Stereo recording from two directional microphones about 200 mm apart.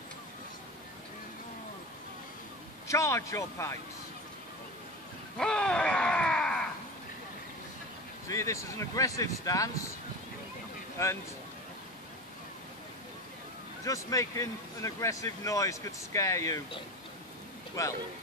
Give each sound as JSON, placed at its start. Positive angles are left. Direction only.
{"t": 2.9, "sound": "speech", "side_deg": 15}
{"t": 5.4, "sound": "a sound", "side_deg": 5}
{"t": 8.3, "sound": "speech", "side_deg": 15}
{"t": 13.8, "sound": "speech", "side_deg": 15}